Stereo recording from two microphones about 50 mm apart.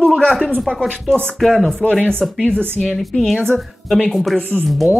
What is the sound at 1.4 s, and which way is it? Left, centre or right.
Speech, centre.